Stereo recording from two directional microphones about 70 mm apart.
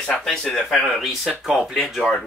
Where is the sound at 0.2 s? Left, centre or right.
Centre.